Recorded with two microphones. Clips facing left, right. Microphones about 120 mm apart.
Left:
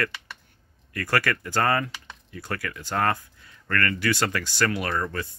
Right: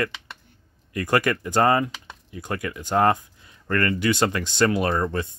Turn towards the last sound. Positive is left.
turn(degrees=-25)  # may be behind; listen again after turning